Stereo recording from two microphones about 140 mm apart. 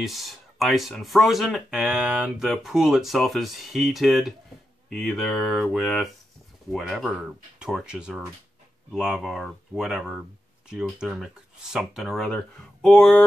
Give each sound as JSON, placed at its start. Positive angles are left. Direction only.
{"t": 0.0, "sound": "speech", "side_deg": 0}